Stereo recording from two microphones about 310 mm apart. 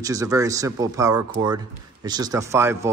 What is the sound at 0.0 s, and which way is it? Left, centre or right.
A man's voice, centre.